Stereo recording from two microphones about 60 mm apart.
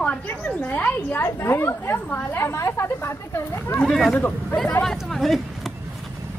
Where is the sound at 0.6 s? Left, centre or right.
Left.